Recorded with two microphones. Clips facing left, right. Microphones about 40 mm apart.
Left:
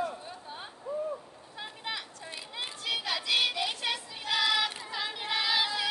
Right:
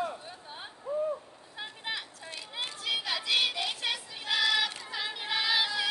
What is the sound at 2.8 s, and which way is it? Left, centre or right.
Female singing, centre.